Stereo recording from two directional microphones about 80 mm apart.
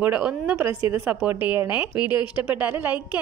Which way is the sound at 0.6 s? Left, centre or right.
Right.